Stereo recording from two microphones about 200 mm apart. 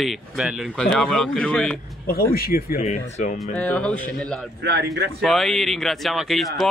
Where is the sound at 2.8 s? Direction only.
35° left (ahead or behind).